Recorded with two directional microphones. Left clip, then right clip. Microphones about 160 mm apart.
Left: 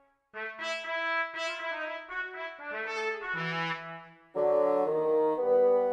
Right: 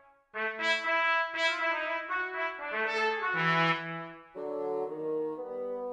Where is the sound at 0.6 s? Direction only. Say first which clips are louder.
Right 5 dB; 20° left (ahead or behind).